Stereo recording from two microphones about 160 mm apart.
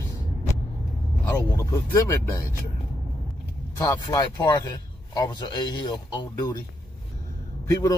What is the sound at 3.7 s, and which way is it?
A man's voice, 25° left (ahead or behind).